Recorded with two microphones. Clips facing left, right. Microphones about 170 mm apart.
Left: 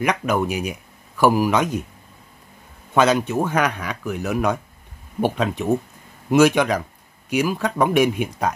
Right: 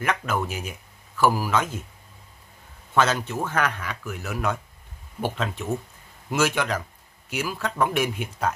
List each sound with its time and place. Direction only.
0.0 s speech: 15° left (ahead or behind)
2.9 s speech: 15° left (ahead or behind)